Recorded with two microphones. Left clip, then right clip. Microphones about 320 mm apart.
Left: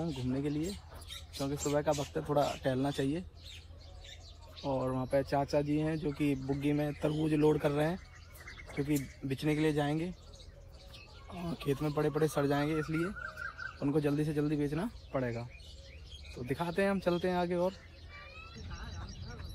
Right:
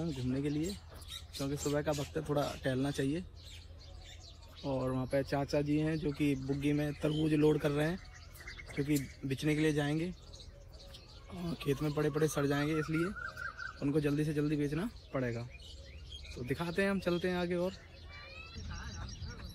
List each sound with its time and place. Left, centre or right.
0.0 s speech: centre
1.7 s speech: centre
4.6 s speech: centre
11.2 s speech: centre
18.5 s a sound: centre